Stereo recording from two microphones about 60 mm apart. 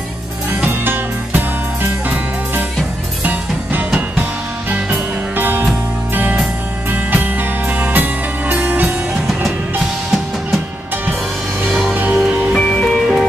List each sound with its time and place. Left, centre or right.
0.7 s music: right
5.4 s music: right
8.8 s music: centre
11.9 s music: right
12.5 s music: centre